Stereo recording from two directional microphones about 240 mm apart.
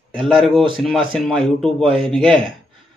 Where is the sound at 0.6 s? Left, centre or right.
Right.